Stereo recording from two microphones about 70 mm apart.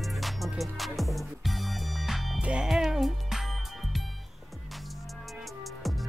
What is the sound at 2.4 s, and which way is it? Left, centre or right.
Music, centre.